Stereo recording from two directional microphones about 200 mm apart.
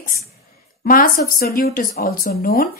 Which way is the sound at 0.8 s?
45° left (ahead or behind).